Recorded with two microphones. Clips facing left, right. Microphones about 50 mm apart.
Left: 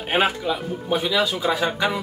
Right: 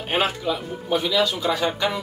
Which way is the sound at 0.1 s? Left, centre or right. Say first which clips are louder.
Left 2 dB; centre.